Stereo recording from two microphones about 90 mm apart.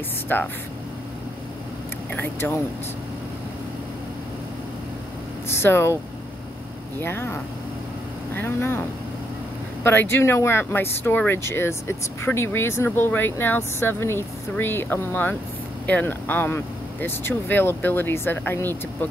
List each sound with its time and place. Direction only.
0.3 s speech: 20° left (ahead or behind)
2.1 s speech: 20° left (ahead or behind)
5.5 s speech: 30° left (ahead or behind)
7.0 s speech: 25° left (ahead or behind)
8.4 s speech: 25° left (ahead or behind)
9.8 s speech: 25° left (ahead or behind)